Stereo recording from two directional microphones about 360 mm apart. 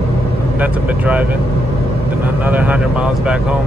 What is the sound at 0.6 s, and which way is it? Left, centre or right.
Speech, centre.